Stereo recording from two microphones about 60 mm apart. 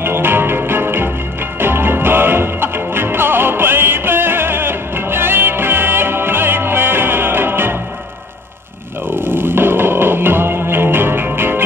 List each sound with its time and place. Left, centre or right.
0.0 s music: right
9.0 s music: right